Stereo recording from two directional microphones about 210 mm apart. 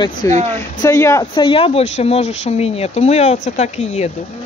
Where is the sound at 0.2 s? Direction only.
15° left (ahead or behind).